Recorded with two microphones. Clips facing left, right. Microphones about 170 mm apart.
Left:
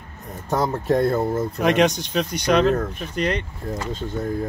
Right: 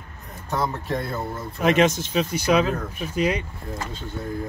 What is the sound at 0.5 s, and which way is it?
Speech, 45° left (ahead or behind).